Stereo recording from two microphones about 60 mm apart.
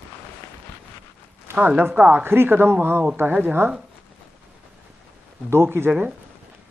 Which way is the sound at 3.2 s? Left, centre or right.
Right.